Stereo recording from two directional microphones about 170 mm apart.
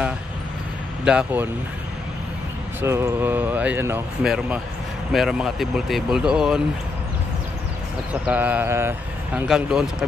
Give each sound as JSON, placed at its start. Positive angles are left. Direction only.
{"t": 1.0, "sound": "speech", "side_deg": -10}
{"t": 2.8, "sound": "speech", "side_deg": -15}
{"t": 8.1, "sound": "speech", "side_deg": -10}
{"t": 9.5, "sound": "speech", "side_deg": -5}